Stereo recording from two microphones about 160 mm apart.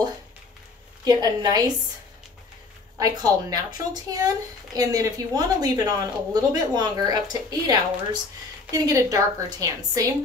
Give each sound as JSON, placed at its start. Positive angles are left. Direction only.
{"t": 1.0, "sound": "speech", "side_deg": -25}
{"t": 3.0, "sound": "speech", "side_deg": -25}